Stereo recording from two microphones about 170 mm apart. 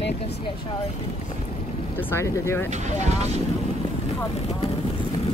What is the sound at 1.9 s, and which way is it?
Speech, 15° left (ahead or behind).